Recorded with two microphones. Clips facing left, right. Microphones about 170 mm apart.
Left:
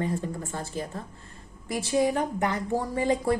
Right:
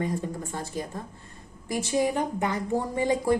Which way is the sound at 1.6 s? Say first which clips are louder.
Right 1 dB; 20° right (ahead or behind).